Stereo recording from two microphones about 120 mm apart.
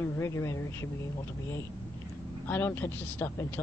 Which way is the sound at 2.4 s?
15° left (ahead or behind).